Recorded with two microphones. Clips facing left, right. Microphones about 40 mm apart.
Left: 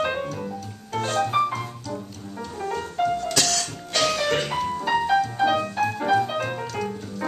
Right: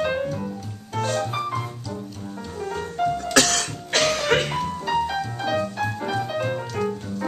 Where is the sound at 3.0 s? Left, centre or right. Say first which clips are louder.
Even; centre.